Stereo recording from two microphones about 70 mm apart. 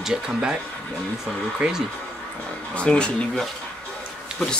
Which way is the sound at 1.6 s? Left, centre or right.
Centre.